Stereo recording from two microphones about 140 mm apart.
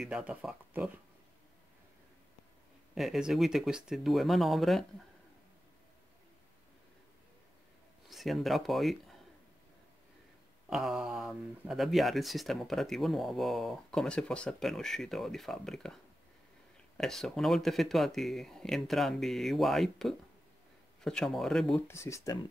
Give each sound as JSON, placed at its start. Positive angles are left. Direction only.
{"t": 0.0, "sound": "speech", "side_deg": -5}
{"t": 2.9, "sound": "speech", "side_deg": 0}
{"t": 8.1, "sound": "speech", "side_deg": 0}
{"t": 10.7, "sound": "speech", "side_deg": -5}
{"t": 21.8, "sound": "speech", "side_deg": 20}